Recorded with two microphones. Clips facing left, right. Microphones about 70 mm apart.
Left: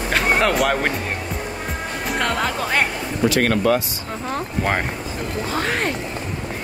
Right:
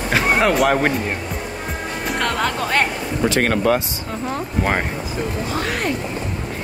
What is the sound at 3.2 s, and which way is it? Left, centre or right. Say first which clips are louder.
Speech: even; right.